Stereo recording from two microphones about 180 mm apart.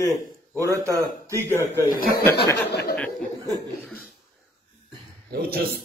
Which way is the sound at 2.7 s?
65° left (ahead or behind).